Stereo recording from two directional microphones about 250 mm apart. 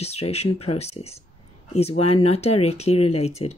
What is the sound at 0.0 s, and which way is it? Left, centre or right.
Speech, left.